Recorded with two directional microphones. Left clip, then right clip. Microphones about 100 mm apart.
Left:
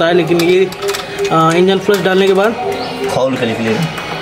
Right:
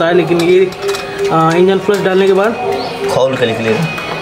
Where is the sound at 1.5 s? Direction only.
25° left (ahead or behind).